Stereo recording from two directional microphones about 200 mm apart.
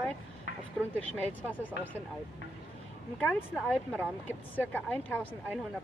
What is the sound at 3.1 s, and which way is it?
Speech, 5° left (ahead or behind).